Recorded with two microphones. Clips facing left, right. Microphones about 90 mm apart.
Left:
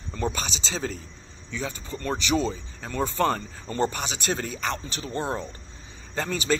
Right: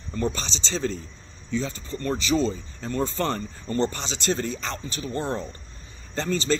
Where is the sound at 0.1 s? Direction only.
15° left (ahead or behind).